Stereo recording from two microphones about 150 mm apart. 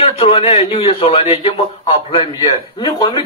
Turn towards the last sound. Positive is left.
turn(degrees=35)  # may be behind; listen again after turning